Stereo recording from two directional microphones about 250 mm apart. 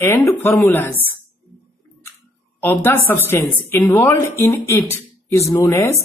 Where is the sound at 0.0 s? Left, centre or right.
Centre.